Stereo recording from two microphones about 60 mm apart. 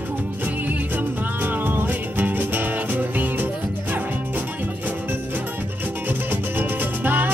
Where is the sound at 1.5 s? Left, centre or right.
Right.